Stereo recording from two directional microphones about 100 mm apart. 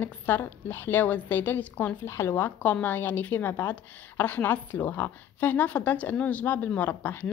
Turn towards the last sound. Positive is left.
turn(degrees=20)  # may be behind; listen again after turning